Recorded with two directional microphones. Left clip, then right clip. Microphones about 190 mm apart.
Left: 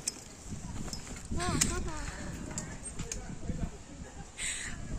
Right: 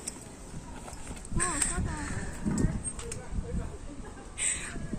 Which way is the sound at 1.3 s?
55° left (ahead or behind).